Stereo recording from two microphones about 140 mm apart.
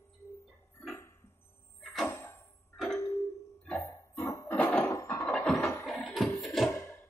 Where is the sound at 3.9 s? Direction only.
20° left (ahead or behind).